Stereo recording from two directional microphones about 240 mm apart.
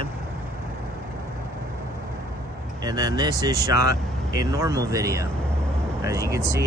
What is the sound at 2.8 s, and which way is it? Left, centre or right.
Speech, centre.